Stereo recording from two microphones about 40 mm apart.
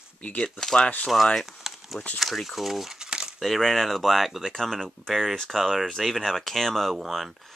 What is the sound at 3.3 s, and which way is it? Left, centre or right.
Speech, centre.